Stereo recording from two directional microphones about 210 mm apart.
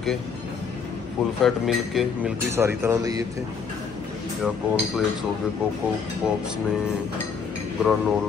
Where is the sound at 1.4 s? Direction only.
Centre (ahead or behind).